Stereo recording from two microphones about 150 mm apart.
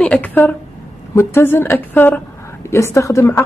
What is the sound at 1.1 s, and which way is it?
A woman's voice, 15° left (ahead or behind).